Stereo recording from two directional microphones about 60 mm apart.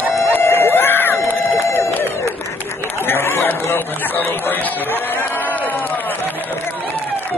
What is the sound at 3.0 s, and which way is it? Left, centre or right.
Chatter, left.